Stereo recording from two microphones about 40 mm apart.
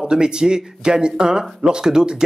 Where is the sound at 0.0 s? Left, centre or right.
Centre.